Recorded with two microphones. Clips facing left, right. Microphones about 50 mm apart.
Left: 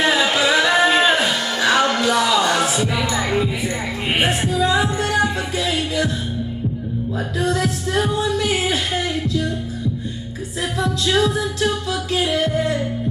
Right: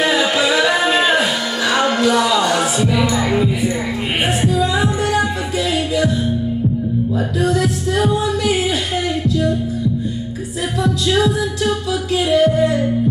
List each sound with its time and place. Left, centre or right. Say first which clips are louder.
1.7 s music: right 2 dB; right
12.3 s music: right 11 dB; right